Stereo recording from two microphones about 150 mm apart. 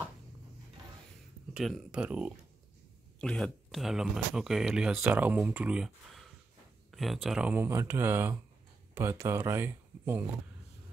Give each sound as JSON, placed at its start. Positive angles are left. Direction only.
{"t": 1.5, "sound": "speech", "side_deg": -5}
{"t": 3.2, "sound": "speech", "side_deg": 5}